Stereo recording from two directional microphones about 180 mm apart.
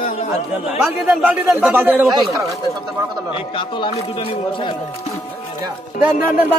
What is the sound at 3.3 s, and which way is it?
Speech, 30° left (ahead or behind).